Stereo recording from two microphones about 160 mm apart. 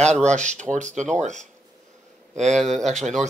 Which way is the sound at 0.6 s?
50° right (ahead or behind).